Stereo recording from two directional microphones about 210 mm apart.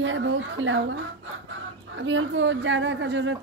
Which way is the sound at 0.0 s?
65° right (ahead or behind).